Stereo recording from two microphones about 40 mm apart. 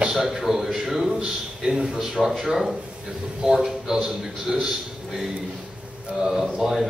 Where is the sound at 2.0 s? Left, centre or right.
Centre.